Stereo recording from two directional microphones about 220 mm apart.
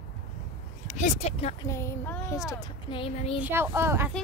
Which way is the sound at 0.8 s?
35° left (ahead or behind).